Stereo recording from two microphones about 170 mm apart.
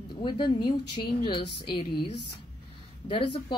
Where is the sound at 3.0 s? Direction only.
30° left (ahead or behind).